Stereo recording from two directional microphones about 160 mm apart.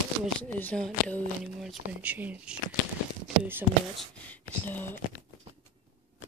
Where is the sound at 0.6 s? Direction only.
5° left (ahead or behind).